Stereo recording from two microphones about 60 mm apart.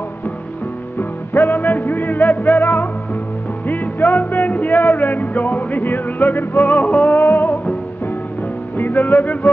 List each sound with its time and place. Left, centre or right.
0.9 s music: left
8.7 s music: left